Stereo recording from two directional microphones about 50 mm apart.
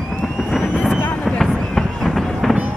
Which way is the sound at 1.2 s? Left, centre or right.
Centre.